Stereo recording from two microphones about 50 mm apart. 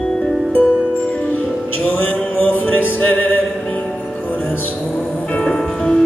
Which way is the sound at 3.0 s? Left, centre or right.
Left.